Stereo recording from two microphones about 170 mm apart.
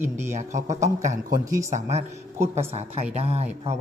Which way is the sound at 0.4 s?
45° right (ahead or behind).